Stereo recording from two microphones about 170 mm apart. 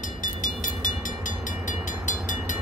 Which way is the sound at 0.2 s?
50° left (ahead or behind).